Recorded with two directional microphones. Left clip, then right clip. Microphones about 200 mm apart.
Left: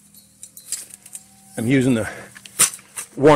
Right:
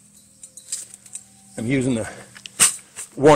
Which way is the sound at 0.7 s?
65° left (ahead or behind).